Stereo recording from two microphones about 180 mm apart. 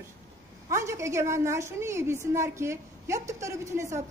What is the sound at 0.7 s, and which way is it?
A woman's voice, 15° right (ahead or behind).